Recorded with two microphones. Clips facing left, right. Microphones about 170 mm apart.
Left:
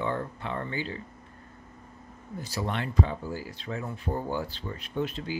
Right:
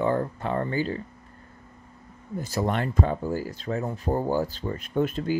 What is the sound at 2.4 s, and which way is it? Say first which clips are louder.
Speech: right 6 dB; 45° right (ahead or behind).